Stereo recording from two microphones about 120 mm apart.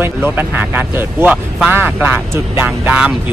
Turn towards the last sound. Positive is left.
turn(degrees=-10)  # may be behind; listen again after turning